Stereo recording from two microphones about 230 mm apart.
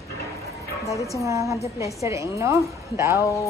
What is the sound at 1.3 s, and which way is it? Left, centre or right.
A woman's voice, centre.